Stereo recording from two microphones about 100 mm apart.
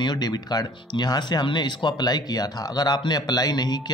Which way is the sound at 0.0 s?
45° left (ahead or behind).